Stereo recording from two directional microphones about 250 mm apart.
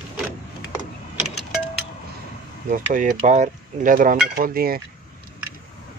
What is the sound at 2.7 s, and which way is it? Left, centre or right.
Speech, right.